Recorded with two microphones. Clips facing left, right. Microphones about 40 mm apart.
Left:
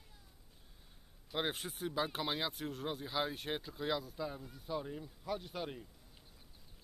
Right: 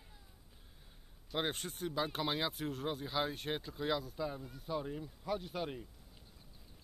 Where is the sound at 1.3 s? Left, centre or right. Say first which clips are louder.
Right 1 dB; centre.